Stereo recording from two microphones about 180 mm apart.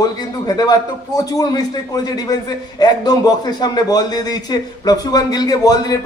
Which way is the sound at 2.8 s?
20° left (ahead or behind).